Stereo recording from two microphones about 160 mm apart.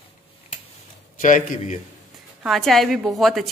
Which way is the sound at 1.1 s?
55° left (ahead or behind).